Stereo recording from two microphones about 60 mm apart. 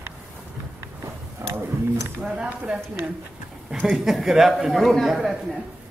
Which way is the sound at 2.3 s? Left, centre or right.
Centre.